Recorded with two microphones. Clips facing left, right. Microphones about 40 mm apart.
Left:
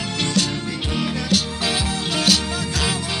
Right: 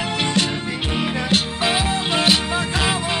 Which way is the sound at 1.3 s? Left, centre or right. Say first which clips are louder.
Right 3 dB; right.